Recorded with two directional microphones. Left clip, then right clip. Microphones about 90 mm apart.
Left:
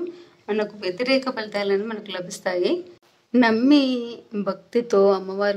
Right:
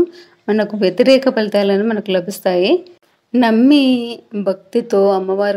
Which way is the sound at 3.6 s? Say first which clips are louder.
Right 6 dB; 40° right (ahead or behind).